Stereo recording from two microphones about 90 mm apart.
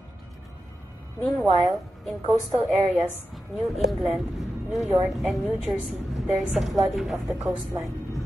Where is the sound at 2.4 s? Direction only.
Centre (ahead or behind).